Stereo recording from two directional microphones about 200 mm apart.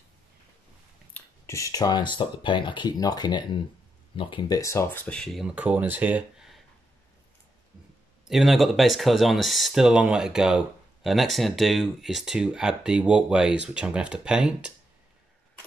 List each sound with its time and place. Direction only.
1.1 s speech: 15° left (ahead or behind); by 6.6 s centre (ahead or behind)
8.3 s speech: centre (ahead or behind)